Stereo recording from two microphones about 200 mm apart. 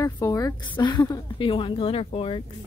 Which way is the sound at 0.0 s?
15° left (ahead or behind).